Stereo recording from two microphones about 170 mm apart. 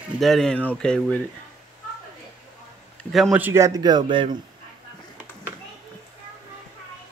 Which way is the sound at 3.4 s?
15° right (ahead or behind).